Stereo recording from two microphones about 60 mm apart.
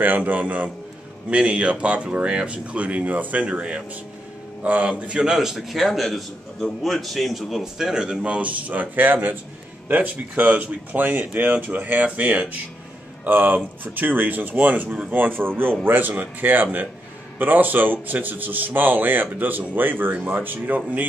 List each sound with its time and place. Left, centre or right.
0.0 s speech: right
5.2 s a man's voice: centre; by 15.1 s right
15.1 s a man's voice: right